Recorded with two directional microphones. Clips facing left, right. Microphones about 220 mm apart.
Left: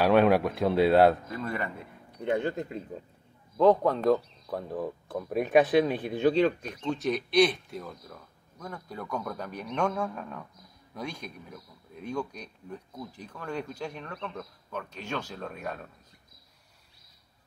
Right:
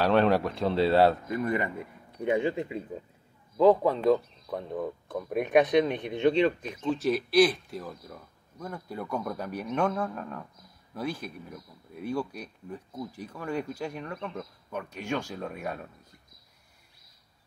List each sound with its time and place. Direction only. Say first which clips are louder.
0.0 s speech: left 2 dB; 10° left (ahead or behind)
1.4 s speech: right 7 dB; 15° right (ahead or behind)
2.2 s speech: right 2 dB; 5° right (ahead or behind)